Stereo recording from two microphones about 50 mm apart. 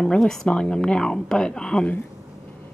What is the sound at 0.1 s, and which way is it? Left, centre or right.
A woman's voice, centre.